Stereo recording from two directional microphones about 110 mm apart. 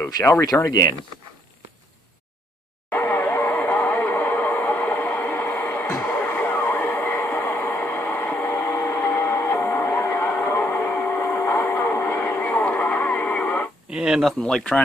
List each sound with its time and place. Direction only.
0.0 s speech: 25° left (ahead or behind)
2.9 s radio: 15° left (ahead or behind)
7.2 s a sound: 15° left (ahead or behind)
10.7 s music: 20° left (ahead or behind)
11.3 s a sound: 15° left (ahead or behind)
11.6 s music: 25° left (ahead or behind)
12.2 s radio: 20° left (ahead or behind)
13.8 s a sound: 5° right (ahead or behind)
14.4 s speech: 10° left (ahead or behind)